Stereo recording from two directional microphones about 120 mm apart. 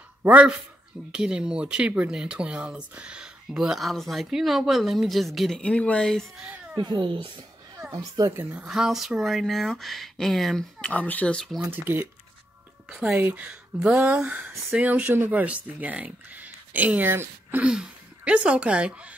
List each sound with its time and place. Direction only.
0.2 s a man's voice: 10° right (ahead or behind); by 6.4 s 5° left (ahead or behind)
6.8 s speech: 40° right (ahead or behind)
7.9 s speech: 30° right (ahead or behind)
8.4 s speech: 15° right (ahead or behind)
8.6 s speech: 5° right (ahead or behind)
10.9 s speech: 15° left (ahead or behind)
11.7 s speech: 15° right (ahead or behind)
13.1 s speech: 15° right (ahead or behind)